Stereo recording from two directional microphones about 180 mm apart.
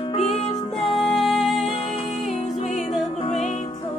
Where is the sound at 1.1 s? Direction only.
Centre (ahead or behind).